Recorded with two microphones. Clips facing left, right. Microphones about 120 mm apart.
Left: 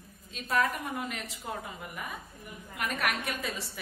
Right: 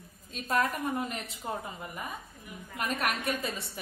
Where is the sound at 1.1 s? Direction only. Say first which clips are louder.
Right 2 dB; 30° right (ahead or behind).